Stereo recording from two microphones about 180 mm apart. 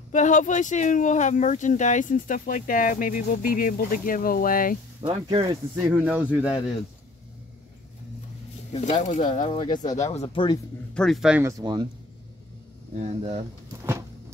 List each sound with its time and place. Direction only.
0.1 s speech: 45° left (ahead or behind)
5.0 s speech: 30° right (ahead or behind)
5.8 s speech: 10° right (ahead or behind)
8.8 s speech: 40° left (ahead or behind)
11.0 s speech: centre (ahead or behind)
11.4 s speech: 20° right (ahead or behind)
13.0 s speech: 35° right (ahead or behind)
13.7 s a sound: 15° right (ahead or behind)